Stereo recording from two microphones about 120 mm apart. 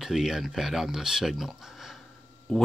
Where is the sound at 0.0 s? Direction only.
5° right (ahead or behind).